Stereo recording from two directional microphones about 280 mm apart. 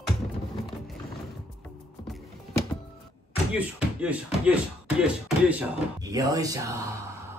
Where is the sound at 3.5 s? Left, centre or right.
Centre.